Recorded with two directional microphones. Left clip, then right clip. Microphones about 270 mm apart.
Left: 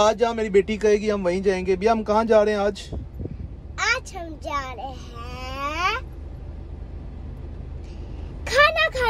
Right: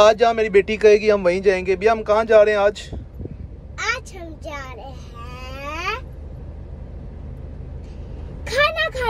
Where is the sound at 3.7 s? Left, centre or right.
Centre.